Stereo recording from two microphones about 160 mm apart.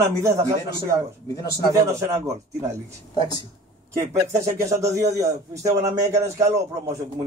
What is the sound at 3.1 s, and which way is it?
Speech, 25° left (ahead or behind).